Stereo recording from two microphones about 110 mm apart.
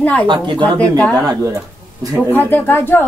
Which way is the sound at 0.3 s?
45° right (ahead or behind).